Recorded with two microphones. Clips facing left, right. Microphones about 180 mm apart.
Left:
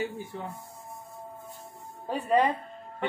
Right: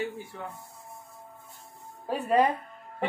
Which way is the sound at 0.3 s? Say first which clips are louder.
Left 2 dB; 20° left (ahead or behind).